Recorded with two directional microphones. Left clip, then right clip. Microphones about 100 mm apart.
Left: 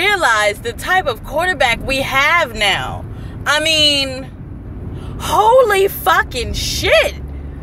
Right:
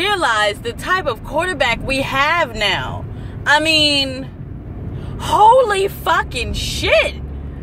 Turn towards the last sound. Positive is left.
turn(degrees=-15)  # may be behind; listen again after turning